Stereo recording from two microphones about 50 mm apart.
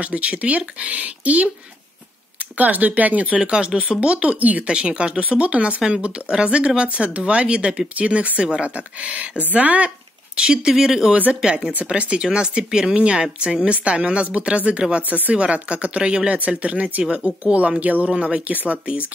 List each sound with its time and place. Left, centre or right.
0.0 s speech: right
2.5 s speech: right
9.8 s speech: centre